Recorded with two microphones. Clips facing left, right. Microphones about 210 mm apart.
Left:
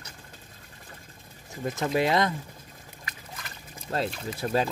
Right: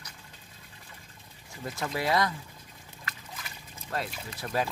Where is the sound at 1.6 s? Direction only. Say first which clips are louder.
Left 7 dB; 20° left (ahead or behind).